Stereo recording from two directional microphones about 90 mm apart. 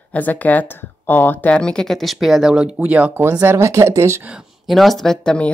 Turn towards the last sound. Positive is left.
turn(degrees=10)  # may be behind; listen again after turning